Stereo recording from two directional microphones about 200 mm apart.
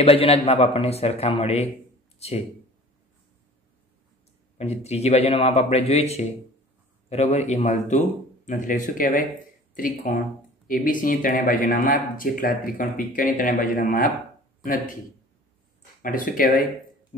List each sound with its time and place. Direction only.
0.0 s speech: 30° left (ahead or behind)
4.6 s speech: 30° left (ahead or behind)
16.0 s speech: 45° left (ahead or behind)